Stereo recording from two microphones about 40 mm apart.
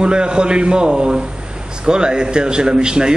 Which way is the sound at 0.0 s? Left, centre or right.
Right.